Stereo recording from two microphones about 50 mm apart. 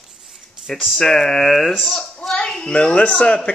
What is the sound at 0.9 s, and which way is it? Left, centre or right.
A child's voice, centre.